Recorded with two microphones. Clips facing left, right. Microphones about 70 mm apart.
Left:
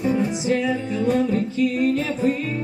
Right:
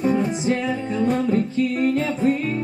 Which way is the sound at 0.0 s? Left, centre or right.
Right.